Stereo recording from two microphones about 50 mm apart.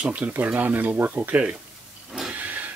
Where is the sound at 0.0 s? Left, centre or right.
Right.